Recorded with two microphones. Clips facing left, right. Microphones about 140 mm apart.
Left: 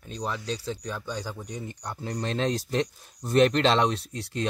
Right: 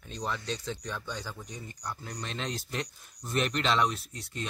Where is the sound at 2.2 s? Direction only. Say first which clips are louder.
Left 10 dB; 40° left (ahead or behind).